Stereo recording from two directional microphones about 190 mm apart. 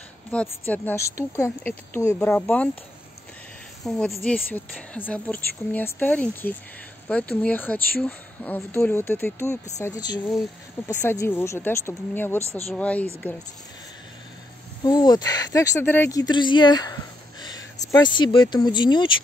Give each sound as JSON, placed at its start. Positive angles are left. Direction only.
{"t": 0.3, "sound": "speech", "side_deg": 5}
{"t": 3.8, "sound": "speech", "side_deg": 0}
{"t": 14.9, "sound": "speech", "side_deg": 20}